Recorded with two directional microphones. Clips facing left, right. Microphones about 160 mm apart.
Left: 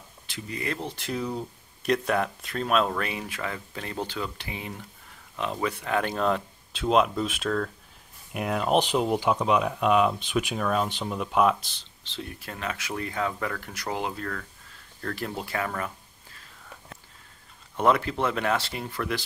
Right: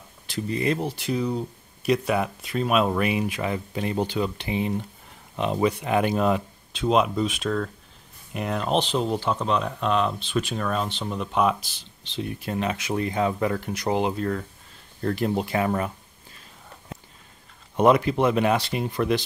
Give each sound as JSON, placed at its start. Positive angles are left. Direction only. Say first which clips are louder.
{"t": 0.3, "sound": "speech", "louder": "right 8 dB", "side_deg": -30}
{"t": 0.7, "sound": "speech", "louder": "right 5 dB", "side_deg": -5}
{"t": 6.7, "sound": "speech", "louder": "right 1 dB", "side_deg": 0}
{"t": 12.0, "sound": "speech", "louder": "right 7 dB", "side_deg": -20}
{"t": 16.9, "sound": "a sound", "louder": "right 11 dB", "side_deg": -20}
{"t": 17.7, "sound": "speech", "louder": "right 5 dB", "side_deg": -15}